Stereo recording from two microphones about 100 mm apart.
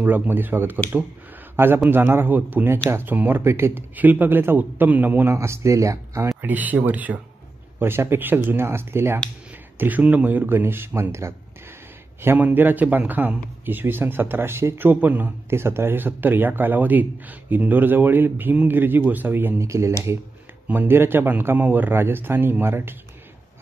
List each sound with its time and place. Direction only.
0.0 s a man's voice: 20° right (ahead or behind)
1.9 s a man's voice: 20° right (ahead or behind)
6.4 s a man's voice: 15° right (ahead or behind)